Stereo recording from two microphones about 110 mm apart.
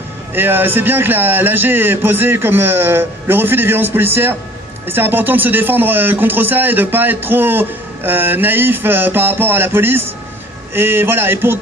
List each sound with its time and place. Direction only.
0.3 s speech: 20° right (ahead or behind)